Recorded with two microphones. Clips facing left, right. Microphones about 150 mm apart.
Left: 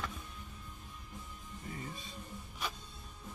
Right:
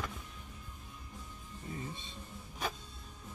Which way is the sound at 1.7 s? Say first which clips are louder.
Right 2 dB; 25° right (ahead or behind).